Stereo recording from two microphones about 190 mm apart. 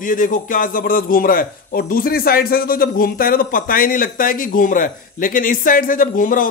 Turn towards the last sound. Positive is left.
turn(degrees=45)  # may be behind; listen again after turning